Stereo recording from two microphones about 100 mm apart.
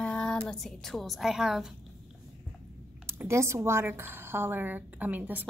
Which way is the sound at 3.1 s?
25° right (ahead or behind).